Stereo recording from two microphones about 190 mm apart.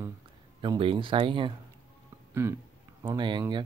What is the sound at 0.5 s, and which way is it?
Speech, 25° right (ahead or behind).